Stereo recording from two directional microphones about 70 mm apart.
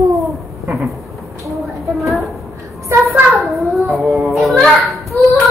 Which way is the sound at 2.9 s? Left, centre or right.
Right.